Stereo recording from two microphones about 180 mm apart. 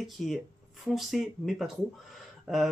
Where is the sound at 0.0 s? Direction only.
Centre (ahead or behind).